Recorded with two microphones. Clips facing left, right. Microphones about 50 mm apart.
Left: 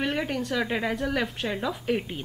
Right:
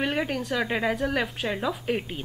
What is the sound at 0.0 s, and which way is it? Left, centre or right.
A woman's voice, centre.